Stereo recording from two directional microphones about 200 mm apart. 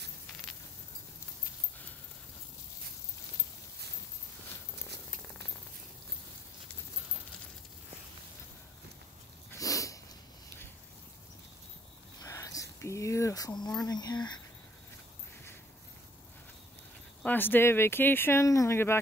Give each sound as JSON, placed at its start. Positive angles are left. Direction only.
{"t": 4.9, "sound": "purr", "side_deg": 10}
{"t": 9.5, "sound": "sneeze", "side_deg": 15}
{"t": 12.2, "sound": "a sound", "side_deg": 15}
{"t": 13.8, "sound": "speech", "side_deg": 20}
{"t": 17.2, "sound": "speech", "side_deg": 10}